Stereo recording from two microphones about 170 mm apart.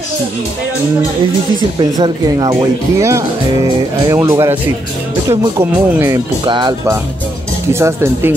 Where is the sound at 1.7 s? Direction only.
25° right (ahead or behind).